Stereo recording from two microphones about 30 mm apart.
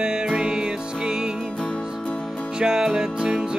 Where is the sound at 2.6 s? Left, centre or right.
Right.